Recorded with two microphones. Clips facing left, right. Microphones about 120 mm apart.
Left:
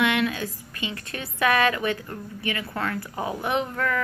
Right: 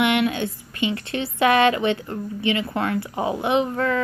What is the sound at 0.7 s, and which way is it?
A woman's voice, 25° right (ahead or behind).